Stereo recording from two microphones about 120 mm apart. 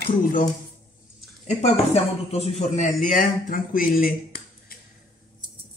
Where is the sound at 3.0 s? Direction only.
90° left.